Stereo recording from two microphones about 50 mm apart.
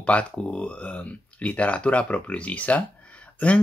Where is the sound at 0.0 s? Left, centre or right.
Left.